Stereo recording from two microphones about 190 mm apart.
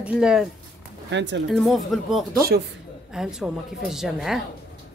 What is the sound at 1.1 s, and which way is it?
Speech, 70° right (ahead or behind).